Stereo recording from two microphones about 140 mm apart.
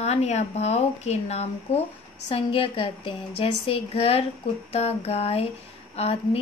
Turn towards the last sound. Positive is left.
turn(degrees=45)  # may be behind; listen again after turning